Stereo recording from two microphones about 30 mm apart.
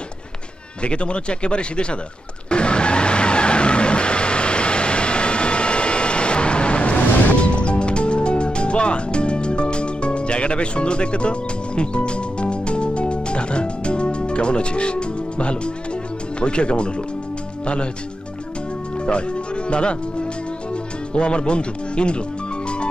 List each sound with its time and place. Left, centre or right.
0.8 s speech: left
2.5 s vehicle: left
7.5 s music: left
16.3 s speech: left
19.0 s music: left
21.1 s speech: left